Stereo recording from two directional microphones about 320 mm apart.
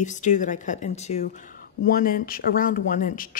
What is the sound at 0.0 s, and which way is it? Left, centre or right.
A woman's voice, left.